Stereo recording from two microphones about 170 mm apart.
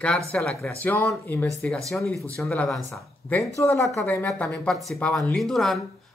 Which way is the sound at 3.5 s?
15° left (ahead or behind).